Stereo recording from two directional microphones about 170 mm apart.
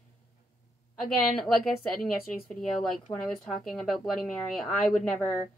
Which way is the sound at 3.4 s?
5° left (ahead or behind).